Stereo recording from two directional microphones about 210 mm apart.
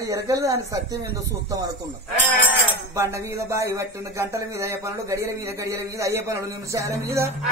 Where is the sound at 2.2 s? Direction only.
10° right (ahead or behind).